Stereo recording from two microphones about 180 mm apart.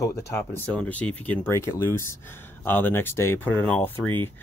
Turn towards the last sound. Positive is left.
turn(degrees=10)  # may be behind; listen again after turning